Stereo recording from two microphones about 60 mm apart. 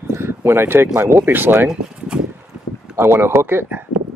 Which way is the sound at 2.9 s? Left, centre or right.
Right.